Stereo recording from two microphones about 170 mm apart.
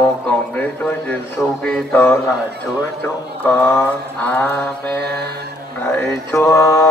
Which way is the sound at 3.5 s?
15° left (ahead or behind).